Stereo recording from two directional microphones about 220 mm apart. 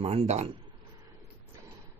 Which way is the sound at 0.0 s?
25° right (ahead or behind).